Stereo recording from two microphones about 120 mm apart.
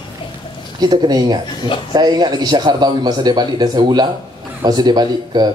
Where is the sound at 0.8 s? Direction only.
35° right (ahead or behind).